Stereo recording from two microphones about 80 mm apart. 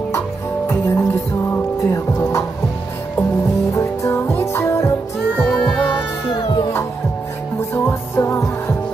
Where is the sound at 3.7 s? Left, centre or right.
Left.